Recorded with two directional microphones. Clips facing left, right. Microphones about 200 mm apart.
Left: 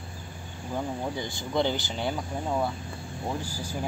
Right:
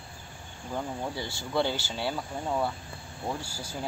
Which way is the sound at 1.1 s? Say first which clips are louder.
Even; 15° left (ahead or behind).